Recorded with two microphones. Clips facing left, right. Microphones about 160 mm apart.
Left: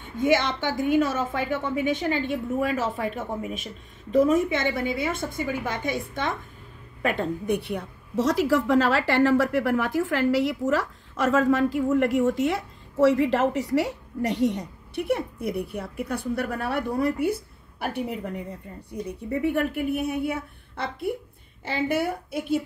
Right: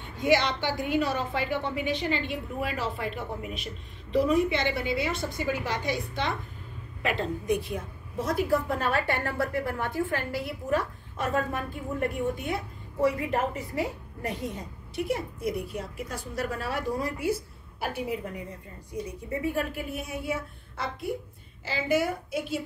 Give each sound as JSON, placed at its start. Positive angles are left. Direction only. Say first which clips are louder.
{"t": 0.3, "sound": "a woman's voice", "louder": "even", "side_deg": 50}
{"t": 7.2, "sound": "a woman's voice", "louder": "left 2 dB", "side_deg": 60}
{"t": 19.4, "sound": "a woman's voice", "louder": "left 6 dB", "side_deg": 60}